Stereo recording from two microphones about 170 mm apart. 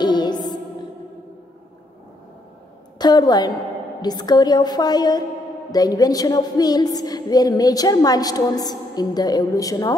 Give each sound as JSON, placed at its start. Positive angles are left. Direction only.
{"t": 0.0, "sound": "music", "side_deg": 25}
{"t": 3.0, "sound": "a woman's voice", "side_deg": 25}